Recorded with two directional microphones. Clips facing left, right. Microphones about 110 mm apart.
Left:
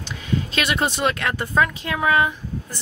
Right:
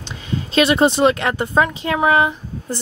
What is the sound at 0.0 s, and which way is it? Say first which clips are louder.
Speech: left 1 dB; 30° right (ahead or behind).